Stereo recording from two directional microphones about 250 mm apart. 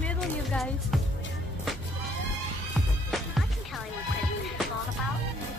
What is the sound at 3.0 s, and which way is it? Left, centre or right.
Music, centre.